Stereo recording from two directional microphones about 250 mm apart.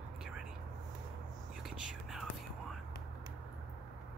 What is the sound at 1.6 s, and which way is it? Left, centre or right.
Whispering, centre.